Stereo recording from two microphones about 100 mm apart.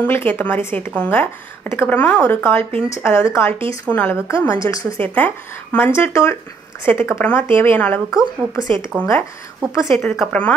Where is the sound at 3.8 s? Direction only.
15° left (ahead or behind).